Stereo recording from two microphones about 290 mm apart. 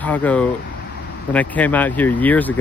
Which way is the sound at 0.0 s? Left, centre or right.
Centre.